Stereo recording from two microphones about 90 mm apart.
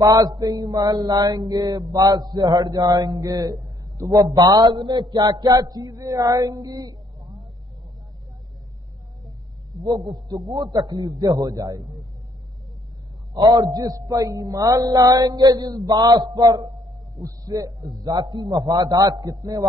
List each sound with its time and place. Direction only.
0.0 s mantra: 45° right (ahead or behind)
9.8 s a man's voice: centre (ahead or behind)
10.5 s mantra: 45° right (ahead or behind)
13.3 s mantra: 45° right (ahead or behind)
17.1 s speech: 40° right (ahead or behind)
18.0 s mantra: 55° right (ahead or behind)